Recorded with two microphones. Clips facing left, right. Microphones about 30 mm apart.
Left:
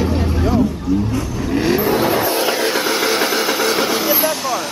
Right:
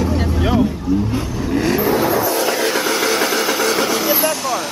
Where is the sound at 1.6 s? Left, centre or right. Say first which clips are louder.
Left 1 dB; centre.